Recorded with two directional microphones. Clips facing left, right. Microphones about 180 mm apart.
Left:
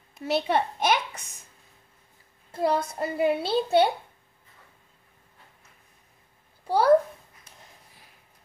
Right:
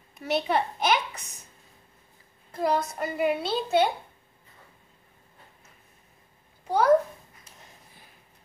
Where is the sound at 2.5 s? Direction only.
30° left (ahead or behind).